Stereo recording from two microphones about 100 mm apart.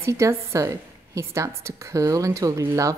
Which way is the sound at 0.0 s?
30° right (ahead or behind).